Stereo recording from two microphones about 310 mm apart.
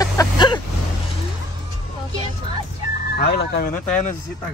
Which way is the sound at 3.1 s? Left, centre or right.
Left.